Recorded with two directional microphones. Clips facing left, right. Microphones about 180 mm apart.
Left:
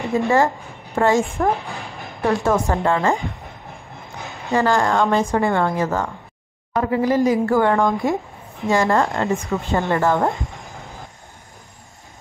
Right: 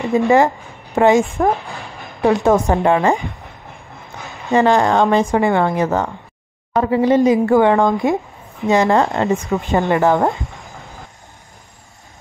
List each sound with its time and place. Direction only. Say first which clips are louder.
0.1 s a woman's voice: right 4 dB; 20° right (ahead or behind)
1.7 s a sound: even; centre (ahead or behind)
2.2 s a woman's voice: right 5 dB; 20° right (ahead or behind)
4.5 s a woman's voice: right 4 dB; 20° right (ahead or behind)